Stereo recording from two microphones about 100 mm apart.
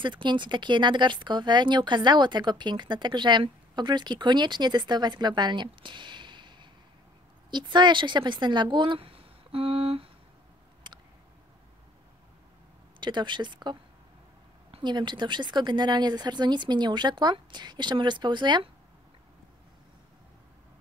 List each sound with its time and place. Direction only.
0.0 s speech: 50° right (ahead or behind); by 10.0 s 70° right (ahead or behind)
10.9 s a sound: 50° right (ahead or behind)
13.0 s speech: 50° right (ahead or behind)